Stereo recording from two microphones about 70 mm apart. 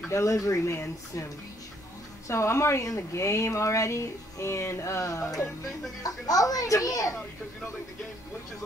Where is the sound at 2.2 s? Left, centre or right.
Left.